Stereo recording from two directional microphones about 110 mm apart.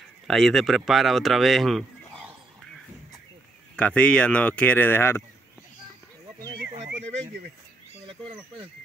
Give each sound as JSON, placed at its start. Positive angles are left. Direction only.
{"t": 0.3, "sound": "speech", "side_deg": 0}
{"t": 3.7, "sound": "speech", "side_deg": 10}
{"t": 6.5, "sound": "speech", "side_deg": -50}